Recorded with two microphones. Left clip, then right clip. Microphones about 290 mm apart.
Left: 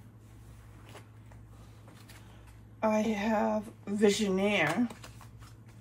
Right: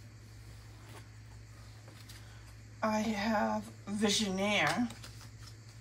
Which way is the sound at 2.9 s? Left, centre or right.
Centre.